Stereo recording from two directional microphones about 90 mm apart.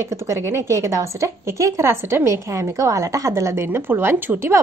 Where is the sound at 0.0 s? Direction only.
35° right (ahead or behind).